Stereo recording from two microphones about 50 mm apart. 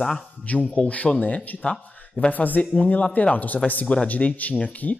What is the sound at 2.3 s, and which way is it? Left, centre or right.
Speech, left.